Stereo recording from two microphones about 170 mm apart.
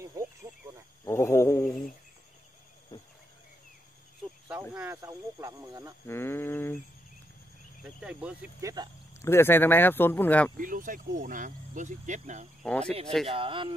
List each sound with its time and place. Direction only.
0.0 s cricket: 15° right (ahead or behind)
1.0 s wild animals: 15° left (ahead or behind)
4.5 s speech: 10° right (ahead or behind)
6.0 s speech: 15° left (ahead or behind)
8.0 s speech: 5° right (ahead or behind)
8.5 s speech: 20° right (ahead or behind)
9.2 s speech: 15° left (ahead or behind)
10.6 s speech: 50° right (ahead or behind)
12.6 s speech: 5° left (ahead or behind)
13.3 s speech: 30° right (ahead or behind)